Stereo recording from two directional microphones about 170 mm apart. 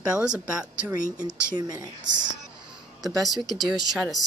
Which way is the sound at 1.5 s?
25° right (ahead or behind).